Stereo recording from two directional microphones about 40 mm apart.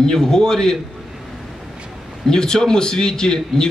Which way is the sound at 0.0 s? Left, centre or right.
Centre.